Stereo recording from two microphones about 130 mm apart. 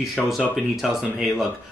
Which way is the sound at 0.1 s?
5° left (ahead or behind).